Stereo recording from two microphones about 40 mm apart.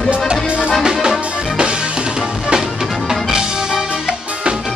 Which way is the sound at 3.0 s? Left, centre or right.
Centre.